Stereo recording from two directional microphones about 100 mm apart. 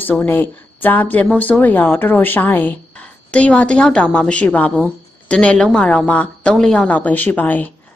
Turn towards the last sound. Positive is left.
turn(degrees=15)  # may be behind; listen again after turning